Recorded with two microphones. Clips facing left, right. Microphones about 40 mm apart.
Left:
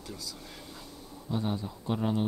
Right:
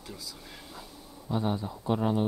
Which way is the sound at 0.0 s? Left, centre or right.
Centre.